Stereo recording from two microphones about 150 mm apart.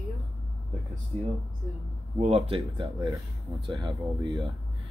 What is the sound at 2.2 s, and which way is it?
Speech, 40° right (ahead or behind).